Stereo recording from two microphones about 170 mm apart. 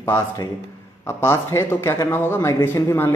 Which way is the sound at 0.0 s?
15° left (ahead or behind).